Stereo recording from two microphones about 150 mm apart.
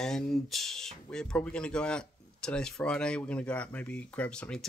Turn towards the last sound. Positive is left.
turn(degrees=5)  # may be behind; listen again after turning